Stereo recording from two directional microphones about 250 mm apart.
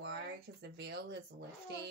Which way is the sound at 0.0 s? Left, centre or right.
Right.